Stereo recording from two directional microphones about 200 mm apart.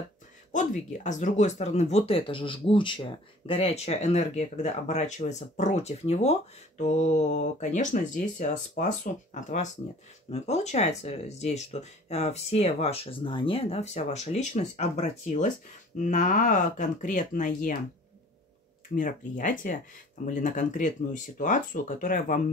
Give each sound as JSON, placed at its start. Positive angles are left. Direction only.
{"t": 0.5, "sound": "speech", "side_deg": 40}
{"t": 18.9, "sound": "speech", "side_deg": 40}